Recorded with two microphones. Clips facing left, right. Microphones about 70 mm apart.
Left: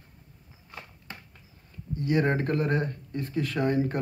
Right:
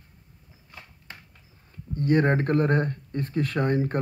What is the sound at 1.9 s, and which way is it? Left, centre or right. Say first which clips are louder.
Speech: right 3 dB; right.